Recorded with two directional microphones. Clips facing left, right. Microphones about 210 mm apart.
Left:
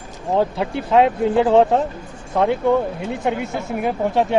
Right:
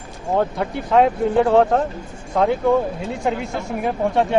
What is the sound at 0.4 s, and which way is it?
Speech, 5° left (ahead or behind).